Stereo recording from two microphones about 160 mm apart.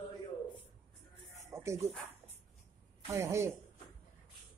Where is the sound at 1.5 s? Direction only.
20° right (ahead or behind).